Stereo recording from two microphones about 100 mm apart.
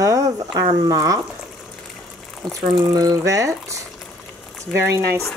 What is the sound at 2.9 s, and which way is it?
Speech, 35° right (ahead or behind).